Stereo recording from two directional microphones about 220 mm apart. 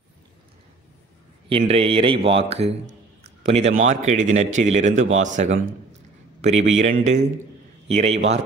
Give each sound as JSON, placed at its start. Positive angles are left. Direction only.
{"t": 1.5, "sound": "a man's voice", "side_deg": -25}